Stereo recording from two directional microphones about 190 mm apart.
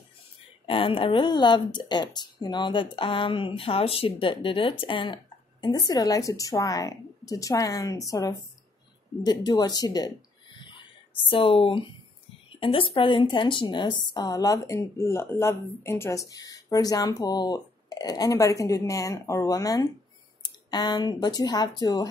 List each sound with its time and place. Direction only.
0.7 s speech: 30° left (ahead or behind)
11.2 s speech: 30° left (ahead or behind)